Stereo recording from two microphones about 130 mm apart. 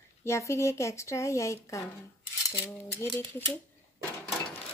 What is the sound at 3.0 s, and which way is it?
Speech, 15° left (ahead or behind).